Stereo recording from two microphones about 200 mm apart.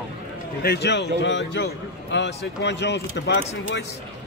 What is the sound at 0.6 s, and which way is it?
Speech, 60° left (ahead or behind).